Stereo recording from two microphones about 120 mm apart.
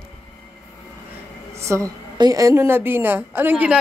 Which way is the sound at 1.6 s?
25° right (ahead or behind).